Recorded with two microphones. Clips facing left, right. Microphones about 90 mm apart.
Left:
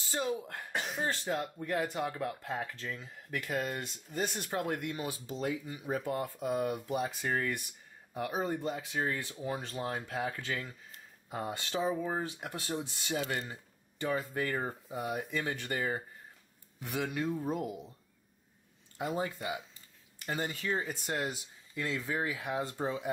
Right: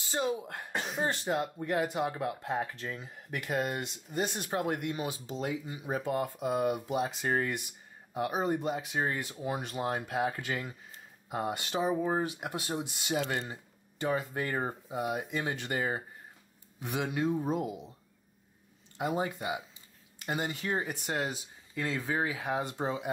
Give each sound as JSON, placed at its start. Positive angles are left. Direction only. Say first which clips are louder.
{"t": 0.0, "sound": "speech", "louder": "right 2 dB", "side_deg": -20}
{"t": 18.9, "sound": "speech", "louder": "right 3 dB", "side_deg": -20}
{"t": 22.6, "sound": "speech", "louder": "right 1 dB", "side_deg": -20}